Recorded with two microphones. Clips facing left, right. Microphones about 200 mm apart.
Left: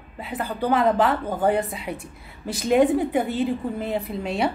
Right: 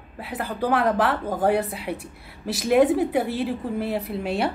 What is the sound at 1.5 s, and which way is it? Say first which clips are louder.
Speech: right 1 dB; 70° right (ahead or behind).